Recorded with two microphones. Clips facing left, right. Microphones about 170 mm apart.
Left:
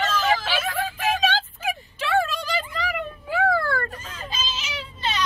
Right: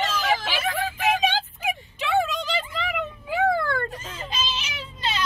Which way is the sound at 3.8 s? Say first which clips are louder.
Right 1 dB; 20° right (ahead or behind).